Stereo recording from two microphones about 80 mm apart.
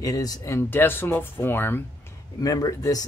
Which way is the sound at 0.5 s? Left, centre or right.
Left.